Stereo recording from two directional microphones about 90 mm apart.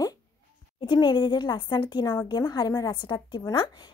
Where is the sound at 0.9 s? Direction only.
55° left (ahead or behind).